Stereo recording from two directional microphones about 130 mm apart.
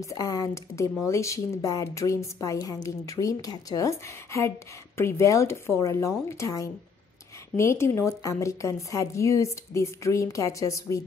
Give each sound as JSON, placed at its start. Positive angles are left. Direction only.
{"t": 0.0, "sound": "speech", "side_deg": 25}